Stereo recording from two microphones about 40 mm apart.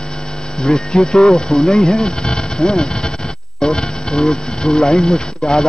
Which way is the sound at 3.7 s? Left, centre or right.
Centre.